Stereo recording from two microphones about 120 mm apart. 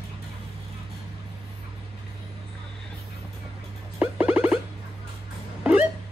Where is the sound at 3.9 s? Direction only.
15° right (ahead or behind).